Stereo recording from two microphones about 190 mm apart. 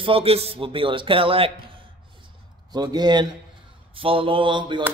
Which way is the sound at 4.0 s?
30° right (ahead or behind).